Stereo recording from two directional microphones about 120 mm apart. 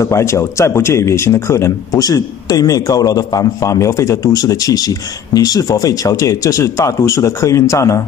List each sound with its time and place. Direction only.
0.0 s speech: 25° left (ahead or behind)